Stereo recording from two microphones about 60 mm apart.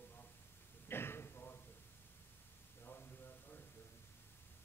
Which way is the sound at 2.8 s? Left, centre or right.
Left.